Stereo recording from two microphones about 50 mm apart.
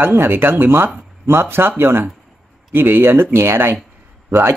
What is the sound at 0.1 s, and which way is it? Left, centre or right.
Speech, right.